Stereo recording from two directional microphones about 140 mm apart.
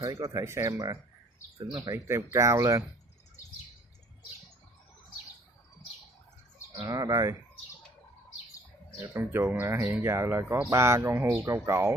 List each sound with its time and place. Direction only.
0.0 s speech: 20° right (ahead or behind)
6.9 s speech: 25° right (ahead or behind)
9.0 s speech: 15° right (ahead or behind)